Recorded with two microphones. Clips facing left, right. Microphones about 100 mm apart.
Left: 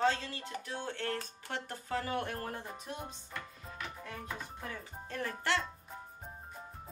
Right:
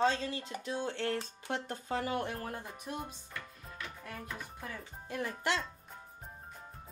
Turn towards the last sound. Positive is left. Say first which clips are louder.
# even
turn(degrees=-15)  # may be behind; listen again after turning